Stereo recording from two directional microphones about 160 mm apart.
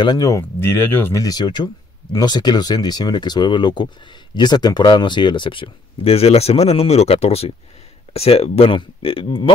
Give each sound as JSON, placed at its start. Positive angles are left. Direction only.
{"t": 0.0, "sound": "speech", "side_deg": 25}